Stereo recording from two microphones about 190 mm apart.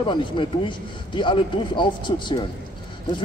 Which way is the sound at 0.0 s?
25° left (ahead or behind).